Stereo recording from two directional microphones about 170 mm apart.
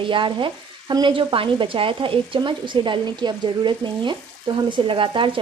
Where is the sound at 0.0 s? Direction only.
30° right (ahead or behind).